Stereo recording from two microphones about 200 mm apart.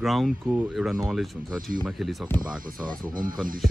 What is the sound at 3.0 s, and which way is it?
Speech, 45° right (ahead or behind).